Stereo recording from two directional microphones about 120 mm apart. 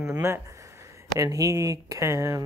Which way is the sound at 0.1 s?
20° right (ahead or behind).